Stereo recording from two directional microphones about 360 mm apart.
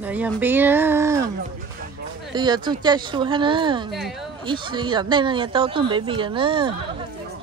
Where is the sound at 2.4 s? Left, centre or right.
Centre.